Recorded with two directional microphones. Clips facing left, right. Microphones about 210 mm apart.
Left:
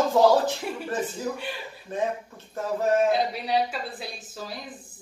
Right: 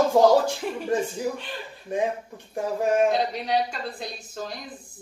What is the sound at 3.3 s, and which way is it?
Speech, 5° left (ahead or behind).